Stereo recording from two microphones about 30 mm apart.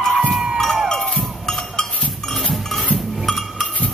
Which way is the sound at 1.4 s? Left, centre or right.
Left.